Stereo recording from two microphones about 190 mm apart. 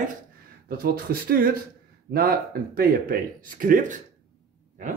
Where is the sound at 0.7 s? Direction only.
50° right (ahead or behind).